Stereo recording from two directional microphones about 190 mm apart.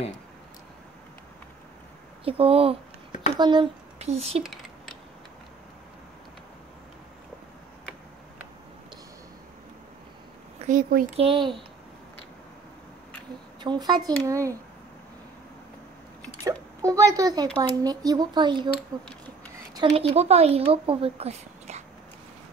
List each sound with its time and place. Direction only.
2.2 s speech: 30° right (ahead or behind)
4.4 s a sound: centre (ahead or behind)
10.7 s speech: 50° right (ahead or behind)
11.1 s speech: 25° right (ahead or behind)
13.6 s speech: 20° right (ahead or behind)
16.8 s speech: 20° right (ahead or behind)
19.2 s a sound: 25° right (ahead or behind)
20.0 s speech: 35° right (ahead or behind)